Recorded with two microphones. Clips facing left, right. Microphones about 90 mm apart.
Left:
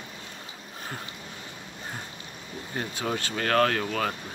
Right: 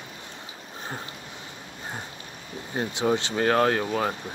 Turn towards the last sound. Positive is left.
turn(degrees=-20)  # may be behind; listen again after turning